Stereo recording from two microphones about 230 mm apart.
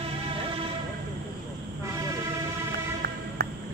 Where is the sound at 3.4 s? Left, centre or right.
Right.